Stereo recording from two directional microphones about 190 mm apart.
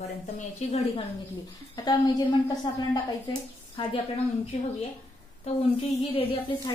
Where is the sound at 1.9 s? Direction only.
20° left (ahead or behind).